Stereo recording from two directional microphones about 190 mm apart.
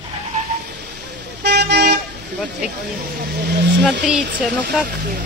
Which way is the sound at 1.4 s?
60° right (ahead or behind).